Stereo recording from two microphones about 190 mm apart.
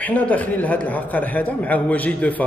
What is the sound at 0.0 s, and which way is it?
A man's voice, 10° left (ahead or behind).